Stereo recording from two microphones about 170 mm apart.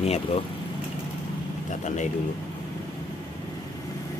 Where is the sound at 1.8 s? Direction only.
45° left (ahead or behind).